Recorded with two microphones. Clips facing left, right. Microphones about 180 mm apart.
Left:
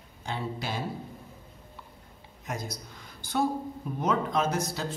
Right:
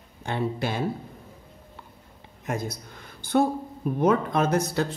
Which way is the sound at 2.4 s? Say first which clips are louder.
Right 6 dB; 55° right (ahead or behind).